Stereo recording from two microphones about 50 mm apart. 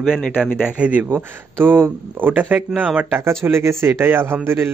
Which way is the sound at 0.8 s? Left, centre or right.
Right.